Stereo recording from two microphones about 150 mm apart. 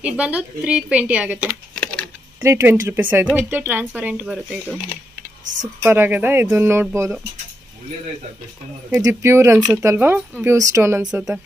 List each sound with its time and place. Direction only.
0.0 s speech: 10° right (ahead or behind)
5.9 s speech: 15° right (ahead or behind)
8.9 s speech: 20° right (ahead or behind)
9.6 s speech: 5° right (ahead or behind)
11.1 s speech: 5° right (ahead or behind)